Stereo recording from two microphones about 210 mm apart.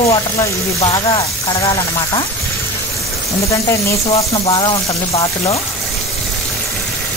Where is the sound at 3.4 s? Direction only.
15° left (ahead or behind).